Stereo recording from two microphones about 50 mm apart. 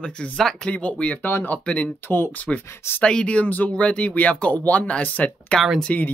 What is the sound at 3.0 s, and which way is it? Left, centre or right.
Speech, left.